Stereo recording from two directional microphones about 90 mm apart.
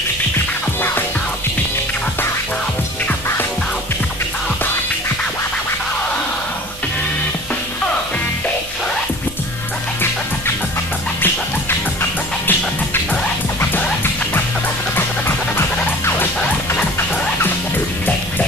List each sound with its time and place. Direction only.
12.0 s music: 25° left (ahead or behind)
15.0 s music: 25° left (ahead or behind)